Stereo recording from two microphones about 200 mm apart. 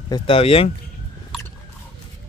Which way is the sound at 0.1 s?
30° left (ahead or behind).